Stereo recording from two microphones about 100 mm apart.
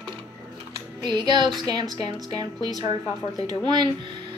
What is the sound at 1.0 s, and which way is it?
Speech, 50° right (ahead or behind).